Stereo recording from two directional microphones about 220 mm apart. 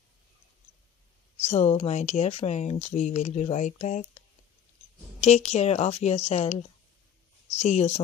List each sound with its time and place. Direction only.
1.4 s speech: 30° left (ahead or behind)
5.2 s a woman's voice: 30° left (ahead or behind)